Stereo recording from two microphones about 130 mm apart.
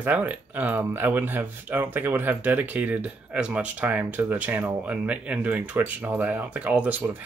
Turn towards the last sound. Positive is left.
turn(degrees=-10)  # may be behind; listen again after turning